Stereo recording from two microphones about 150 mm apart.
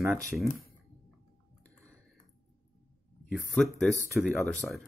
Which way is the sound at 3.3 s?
5° left (ahead or behind).